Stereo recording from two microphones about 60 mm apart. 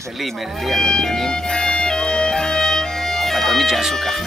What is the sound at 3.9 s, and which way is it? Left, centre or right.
Speech, centre.